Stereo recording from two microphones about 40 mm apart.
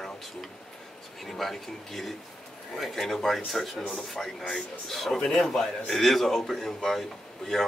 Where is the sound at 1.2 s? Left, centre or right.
Centre.